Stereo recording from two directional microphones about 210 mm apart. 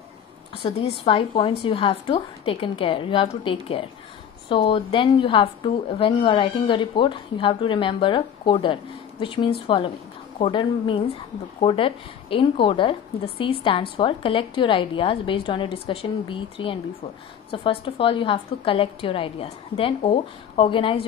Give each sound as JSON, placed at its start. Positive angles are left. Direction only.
{"t": 0.6, "sound": "a woman's voice", "side_deg": 25}